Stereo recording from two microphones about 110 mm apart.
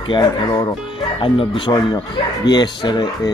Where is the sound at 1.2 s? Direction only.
50° left (ahead or behind).